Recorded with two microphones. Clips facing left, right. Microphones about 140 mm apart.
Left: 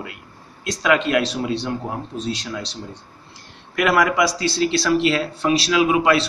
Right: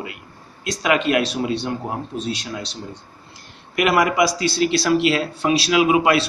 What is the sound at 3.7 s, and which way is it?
Speech, 15° right (ahead or behind).